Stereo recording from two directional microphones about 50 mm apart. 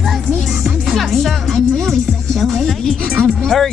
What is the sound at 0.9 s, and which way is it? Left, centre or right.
Music, centre.